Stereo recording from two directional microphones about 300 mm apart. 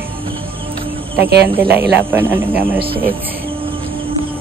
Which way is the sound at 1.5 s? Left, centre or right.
Centre.